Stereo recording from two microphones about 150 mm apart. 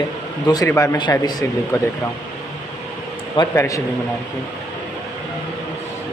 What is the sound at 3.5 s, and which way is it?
Speech, 20° left (ahead or behind).